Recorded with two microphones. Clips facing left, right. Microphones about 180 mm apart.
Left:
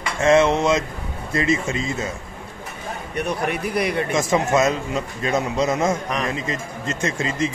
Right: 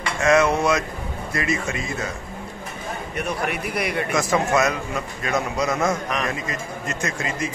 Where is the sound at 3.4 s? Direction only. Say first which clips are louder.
Left 3 dB; 30° left (ahead or behind).